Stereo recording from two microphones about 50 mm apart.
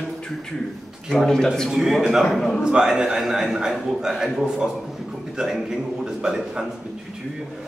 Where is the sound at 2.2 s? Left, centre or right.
Centre.